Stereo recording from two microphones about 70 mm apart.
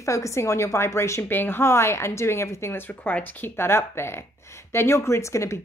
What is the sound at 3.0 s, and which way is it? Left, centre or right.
A woman's voice, left.